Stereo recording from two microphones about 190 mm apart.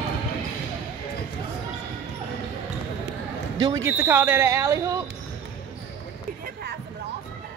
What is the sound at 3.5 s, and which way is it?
Speech, 25° right (ahead or behind).